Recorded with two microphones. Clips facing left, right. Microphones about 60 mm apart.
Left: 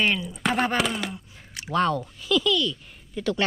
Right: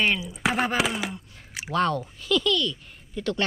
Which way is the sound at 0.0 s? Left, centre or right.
Centre.